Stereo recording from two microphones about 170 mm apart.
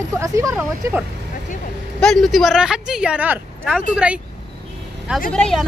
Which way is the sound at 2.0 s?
5° left (ahead or behind).